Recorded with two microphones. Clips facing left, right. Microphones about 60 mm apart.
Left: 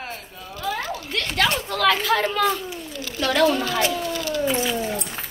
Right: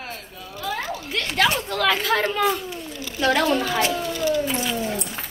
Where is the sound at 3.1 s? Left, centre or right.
Centre.